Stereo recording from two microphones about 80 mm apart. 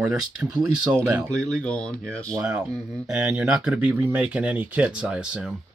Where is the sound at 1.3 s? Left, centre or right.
Centre.